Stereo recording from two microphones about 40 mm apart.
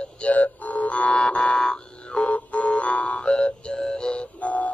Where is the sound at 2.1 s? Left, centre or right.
Left.